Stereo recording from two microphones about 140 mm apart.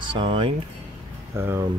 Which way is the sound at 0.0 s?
35° right (ahead or behind).